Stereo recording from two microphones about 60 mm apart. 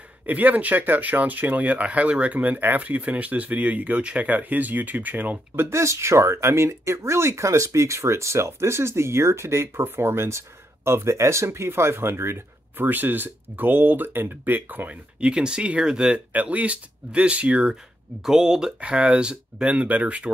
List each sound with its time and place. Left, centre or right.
0.3 s speech: right
5.6 s speech: right
15.1 s speech: centre
16.3 s speech: right
18.2 s speech: centre